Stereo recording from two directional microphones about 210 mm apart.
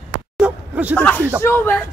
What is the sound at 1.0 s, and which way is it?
Speech, 10° left (ahead or behind).